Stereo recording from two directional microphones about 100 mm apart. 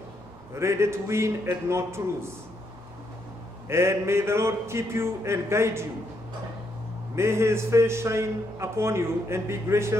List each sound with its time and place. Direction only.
0.6 s a man's voice: 25° right (ahead or behind)
3.6 s a man's voice: 25° right (ahead or behind)
7.2 s a man's voice: 25° right (ahead or behind)